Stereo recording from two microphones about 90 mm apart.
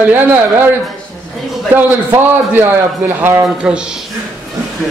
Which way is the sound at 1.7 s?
20° right (ahead or behind).